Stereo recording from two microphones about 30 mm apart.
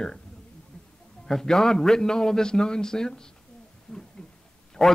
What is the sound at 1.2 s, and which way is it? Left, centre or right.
Speech, centre.